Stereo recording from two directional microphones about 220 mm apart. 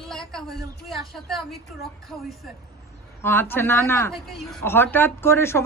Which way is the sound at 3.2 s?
10° left (ahead or behind).